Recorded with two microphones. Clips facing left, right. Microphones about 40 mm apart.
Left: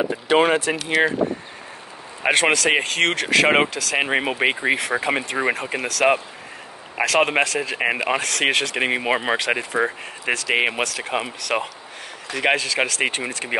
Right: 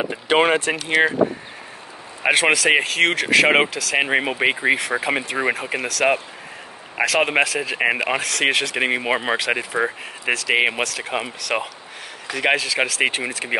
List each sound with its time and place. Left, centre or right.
0.0 s speech: right
2.2 s speech: centre